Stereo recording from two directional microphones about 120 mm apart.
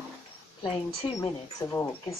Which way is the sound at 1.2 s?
20° left (ahead or behind).